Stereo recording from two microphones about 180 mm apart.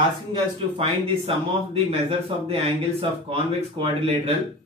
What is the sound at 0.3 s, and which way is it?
Speech, 30° right (ahead or behind).